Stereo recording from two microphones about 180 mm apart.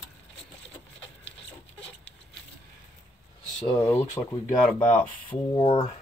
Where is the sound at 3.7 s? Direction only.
15° left (ahead or behind).